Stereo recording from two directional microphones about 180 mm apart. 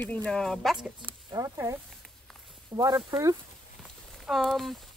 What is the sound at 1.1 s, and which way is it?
Speech, 20° right (ahead or behind).